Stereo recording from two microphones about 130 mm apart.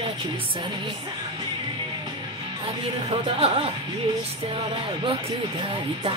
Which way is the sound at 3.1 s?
45° right (ahead or behind).